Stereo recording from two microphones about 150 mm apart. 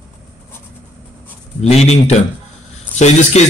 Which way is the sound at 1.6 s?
45° left (ahead or behind).